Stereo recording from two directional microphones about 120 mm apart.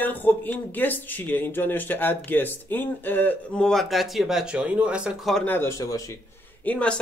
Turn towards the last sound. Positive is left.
turn(degrees=10)  # may be behind; listen again after turning